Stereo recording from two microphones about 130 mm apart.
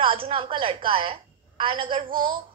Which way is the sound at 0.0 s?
45° right (ahead or behind).